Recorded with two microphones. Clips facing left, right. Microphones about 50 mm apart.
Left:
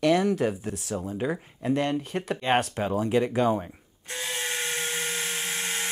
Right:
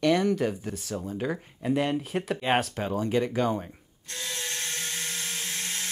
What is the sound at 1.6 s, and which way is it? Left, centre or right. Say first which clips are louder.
Speech: even; centre.